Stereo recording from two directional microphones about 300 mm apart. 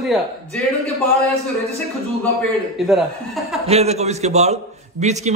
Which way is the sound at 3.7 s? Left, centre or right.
Right.